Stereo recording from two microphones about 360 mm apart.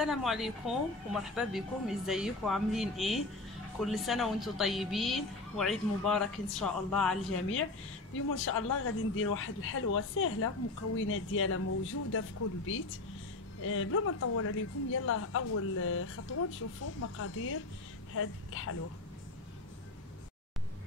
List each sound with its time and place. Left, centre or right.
0.0 s a woman's voice: centre
8.1 s a woman's voice: left